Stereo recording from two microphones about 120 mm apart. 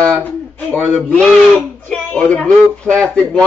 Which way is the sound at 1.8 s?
10° left (ahead or behind).